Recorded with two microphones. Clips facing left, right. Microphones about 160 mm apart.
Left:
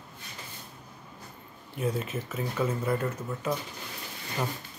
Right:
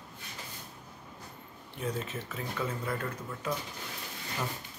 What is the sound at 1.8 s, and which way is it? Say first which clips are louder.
Speech: left 5 dB; 10° left (ahead or behind).